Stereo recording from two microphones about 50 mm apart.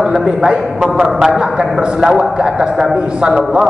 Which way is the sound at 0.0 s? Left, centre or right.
Centre.